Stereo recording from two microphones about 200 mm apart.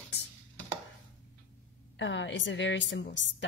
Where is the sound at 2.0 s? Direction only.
65° left (ahead or behind).